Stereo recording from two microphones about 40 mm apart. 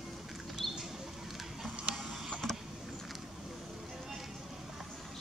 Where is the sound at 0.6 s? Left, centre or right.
Centre.